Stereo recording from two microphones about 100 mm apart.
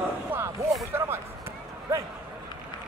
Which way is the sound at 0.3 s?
25° right (ahead or behind).